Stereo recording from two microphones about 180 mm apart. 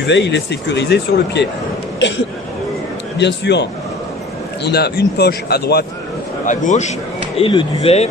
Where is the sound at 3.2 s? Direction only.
70° left (ahead or behind).